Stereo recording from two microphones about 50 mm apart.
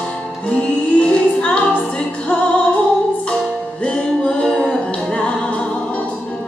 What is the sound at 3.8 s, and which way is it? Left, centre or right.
Music, left.